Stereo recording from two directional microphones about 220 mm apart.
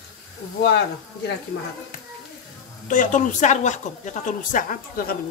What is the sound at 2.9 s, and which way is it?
A woman's voice, 35° left (ahead or behind).